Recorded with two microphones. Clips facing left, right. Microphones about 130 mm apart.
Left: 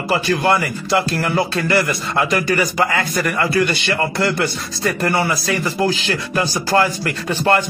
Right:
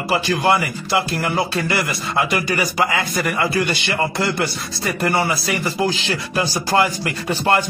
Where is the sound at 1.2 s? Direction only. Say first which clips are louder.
Left 2 dB; 20° right (ahead or behind).